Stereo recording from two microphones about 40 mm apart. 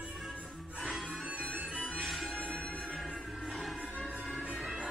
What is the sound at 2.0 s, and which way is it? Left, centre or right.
Music, centre.